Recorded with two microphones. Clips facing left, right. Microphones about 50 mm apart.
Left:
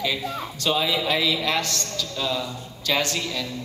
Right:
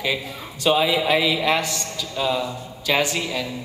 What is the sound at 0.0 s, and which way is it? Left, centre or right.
A man's voice, centre.